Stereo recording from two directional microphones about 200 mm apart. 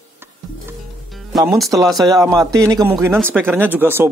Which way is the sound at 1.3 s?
Centre (ahead or behind).